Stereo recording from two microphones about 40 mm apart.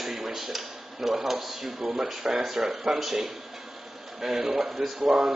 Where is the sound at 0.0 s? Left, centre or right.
Centre.